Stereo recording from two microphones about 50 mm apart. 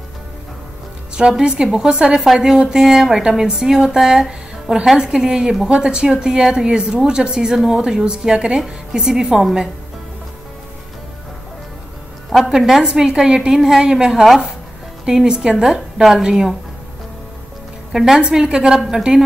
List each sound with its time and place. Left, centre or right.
1.1 s a woman's voice: centre
12.3 s a woman's voice: centre
15.0 s a woman's voice: centre
17.9 s a woman's voice: centre